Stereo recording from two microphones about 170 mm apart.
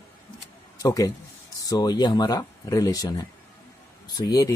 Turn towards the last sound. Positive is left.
turn(degrees=20)  # may be behind; listen again after turning